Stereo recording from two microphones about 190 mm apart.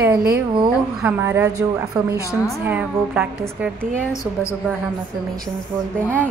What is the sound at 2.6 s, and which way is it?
Speech, 10° right (ahead or behind).